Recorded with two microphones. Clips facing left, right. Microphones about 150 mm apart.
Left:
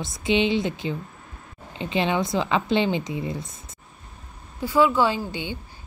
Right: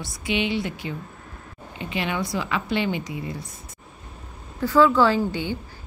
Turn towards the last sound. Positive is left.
turn(degrees=20)  # may be behind; listen again after turning